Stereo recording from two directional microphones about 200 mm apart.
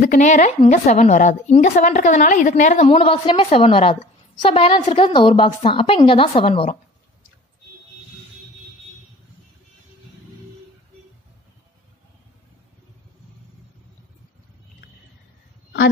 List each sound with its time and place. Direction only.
0.0 s a woman's voice: 40° left (ahead or behind)